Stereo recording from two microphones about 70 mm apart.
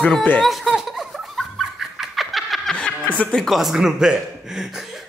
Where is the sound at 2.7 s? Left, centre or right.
Centre.